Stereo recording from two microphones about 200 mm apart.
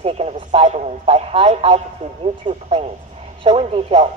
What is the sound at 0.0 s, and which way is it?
A man's voice, 30° right (ahead or behind).